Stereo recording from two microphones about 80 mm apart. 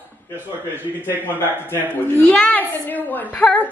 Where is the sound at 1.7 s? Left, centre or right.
Left.